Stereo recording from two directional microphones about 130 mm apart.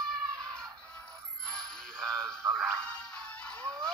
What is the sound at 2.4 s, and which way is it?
Music, 25° right (ahead or behind).